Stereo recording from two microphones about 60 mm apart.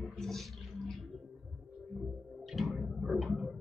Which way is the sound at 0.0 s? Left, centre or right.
Centre.